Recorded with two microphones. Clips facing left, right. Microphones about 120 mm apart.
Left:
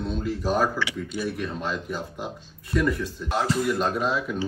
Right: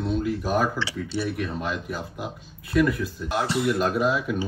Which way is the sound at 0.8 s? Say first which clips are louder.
Even; 30° right (ahead or behind).